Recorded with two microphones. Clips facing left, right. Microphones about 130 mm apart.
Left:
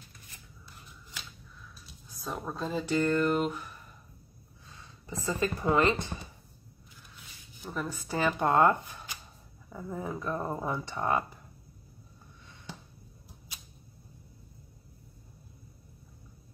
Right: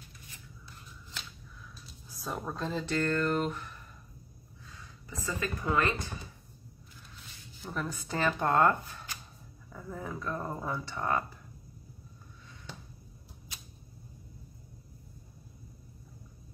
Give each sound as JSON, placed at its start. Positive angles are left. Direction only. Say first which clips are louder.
{"t": 2.1, "sound": "speech", "louder": "even", "side_deg": 0}
{"t": 4.6, "sound": "a sound", "louder": "left 4 dB", "side_deg": 25}
{"t": 5.6, "sound": "speech", "louder": "left 4 dB", "side_deg": 20}
{"t": 7.6, "sound": "speech", "louder": "left 1 dB", "side_deg": 10}